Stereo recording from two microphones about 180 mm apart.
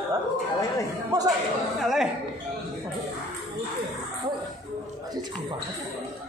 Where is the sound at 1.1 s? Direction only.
20° right (ahead or behind).